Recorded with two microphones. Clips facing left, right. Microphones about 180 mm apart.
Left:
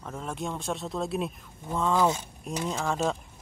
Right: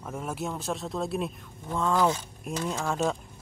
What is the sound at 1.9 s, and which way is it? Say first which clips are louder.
Speech: even; 20° left (ahead or behind).